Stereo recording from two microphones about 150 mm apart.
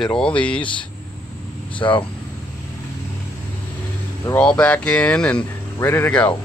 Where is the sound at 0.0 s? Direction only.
5° left (ahead or behind).